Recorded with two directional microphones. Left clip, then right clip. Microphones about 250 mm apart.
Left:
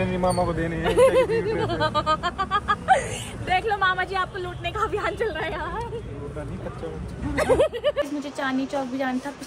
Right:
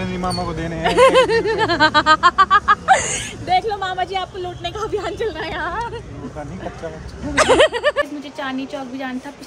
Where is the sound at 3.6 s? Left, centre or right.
Left.